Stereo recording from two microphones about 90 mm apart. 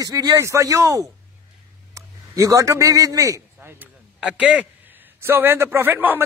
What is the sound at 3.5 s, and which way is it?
A man's voice, 20° right (ahead or behind).